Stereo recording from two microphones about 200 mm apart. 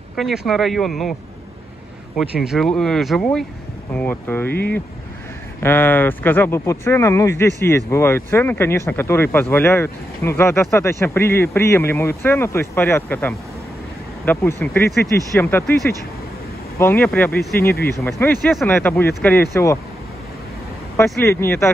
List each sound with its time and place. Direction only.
0.1 s a sound: centre (ahead or behind)
0.5 s speech: centre (ahead or behind)
2.4 s speech: centre (ahead or behind)
5.6 s speech: 10° left (ahead or behind)
16.7 s speech: 10° left (ahead or behind)
17.4 s speech: 50° left (ahead or behind)
17.8 s speech: 15° left (ahead or behind)
21.2 s speech: 15° left (ahead or behind)